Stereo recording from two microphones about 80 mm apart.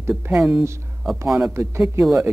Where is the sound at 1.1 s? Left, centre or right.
Right.